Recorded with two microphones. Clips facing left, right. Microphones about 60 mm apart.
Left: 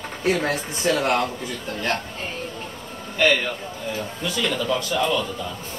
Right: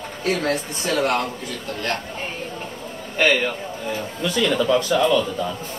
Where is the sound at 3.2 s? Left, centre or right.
Centre.